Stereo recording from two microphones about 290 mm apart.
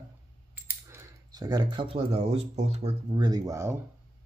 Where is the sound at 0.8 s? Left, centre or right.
Centre.